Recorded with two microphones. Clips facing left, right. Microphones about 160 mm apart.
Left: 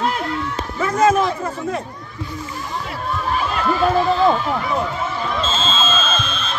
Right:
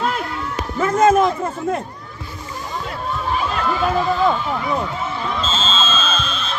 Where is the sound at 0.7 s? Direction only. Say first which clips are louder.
Right 3 dB; 45° right (ahead or behind).